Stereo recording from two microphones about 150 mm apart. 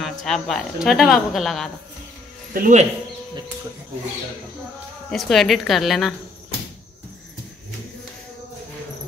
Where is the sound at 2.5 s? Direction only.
70° right (ahead or behind).